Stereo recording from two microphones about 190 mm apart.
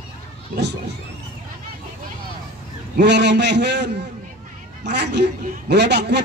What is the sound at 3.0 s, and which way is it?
A man's voice, 65° right (ahead or behind).